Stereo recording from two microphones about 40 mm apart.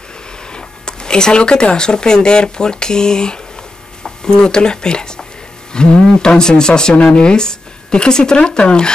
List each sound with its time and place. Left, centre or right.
0.5 s speech: centre